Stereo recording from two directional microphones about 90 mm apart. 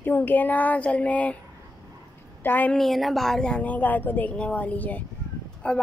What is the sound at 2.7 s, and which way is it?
A woman's voice, centre (ahead or behind).